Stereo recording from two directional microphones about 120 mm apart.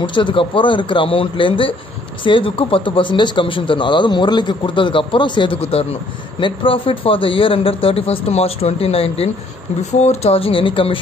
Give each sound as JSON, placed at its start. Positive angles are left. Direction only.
{"t": 0.0, "sound": "speech", "side_deg": 40}
{"t": 9.8, "sound": "speech", "side_deg": 70}